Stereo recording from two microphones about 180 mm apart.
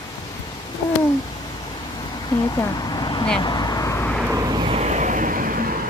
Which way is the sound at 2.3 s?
20° left (ahead or behind).